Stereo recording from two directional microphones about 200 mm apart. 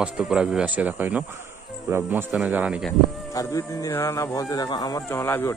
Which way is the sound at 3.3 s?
15° left (ahead or behind).